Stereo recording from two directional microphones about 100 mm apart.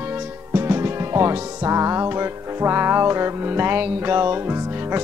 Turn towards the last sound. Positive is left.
turn(degrees=-20)  # may be behind; listen again after turning